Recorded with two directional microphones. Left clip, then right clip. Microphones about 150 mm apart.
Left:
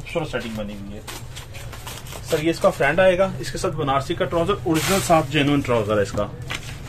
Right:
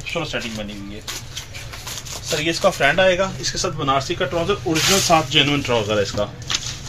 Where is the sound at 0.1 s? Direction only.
15° left (ahead or behind).